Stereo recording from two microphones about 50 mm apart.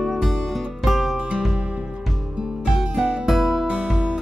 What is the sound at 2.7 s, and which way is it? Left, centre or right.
Music, centre.